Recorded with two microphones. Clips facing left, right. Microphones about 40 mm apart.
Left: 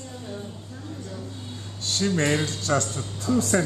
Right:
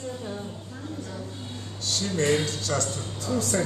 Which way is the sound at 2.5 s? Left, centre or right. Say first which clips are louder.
Left 3 dB; left.